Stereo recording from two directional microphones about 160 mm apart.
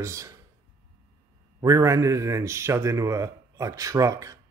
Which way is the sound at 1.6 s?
20° right (ahead or behind).